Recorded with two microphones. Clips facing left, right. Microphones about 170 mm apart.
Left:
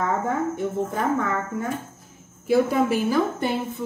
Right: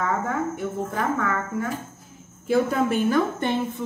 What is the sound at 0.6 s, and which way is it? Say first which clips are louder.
A woman's voice: left 2 dB; 20° left (ahead or behind).